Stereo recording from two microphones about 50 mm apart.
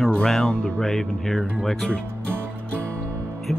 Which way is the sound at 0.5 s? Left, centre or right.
Centre.